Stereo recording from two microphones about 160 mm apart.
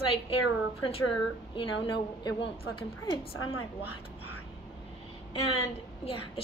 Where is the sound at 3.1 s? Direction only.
35° left (ahead or behind).